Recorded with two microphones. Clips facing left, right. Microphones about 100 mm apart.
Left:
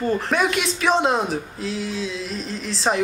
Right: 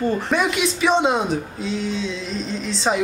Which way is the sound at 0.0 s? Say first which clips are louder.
Right 1 dB; centre (ahead or behind).